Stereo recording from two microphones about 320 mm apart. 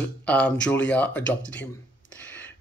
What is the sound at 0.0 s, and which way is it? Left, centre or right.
Speech, centre.